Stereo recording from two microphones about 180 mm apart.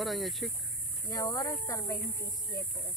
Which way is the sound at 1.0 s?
20° left (ahead or behind).